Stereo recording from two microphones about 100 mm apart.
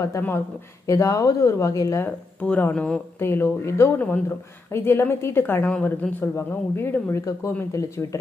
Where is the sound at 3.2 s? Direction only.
25° left (ahead or behind).